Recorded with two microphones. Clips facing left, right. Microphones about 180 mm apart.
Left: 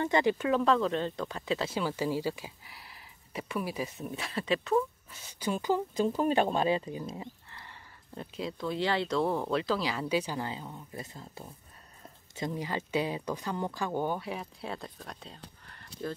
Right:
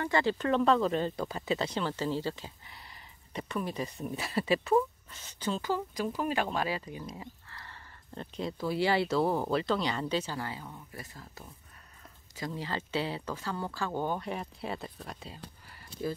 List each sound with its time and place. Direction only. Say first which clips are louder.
0.0 s speech: left 2 dB; 20° left (ahead or behind)
0.5 s speech: right 4 dB; centre (ahead or behind)
5.1 s speech: left 1 dB; 10° left (ahead or behind)
8.1 s speech: right 1 dB; 5° left (ahead or behind)